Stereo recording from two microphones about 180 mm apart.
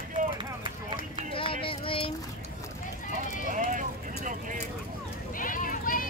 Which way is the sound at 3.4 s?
45° right (ahead or behind).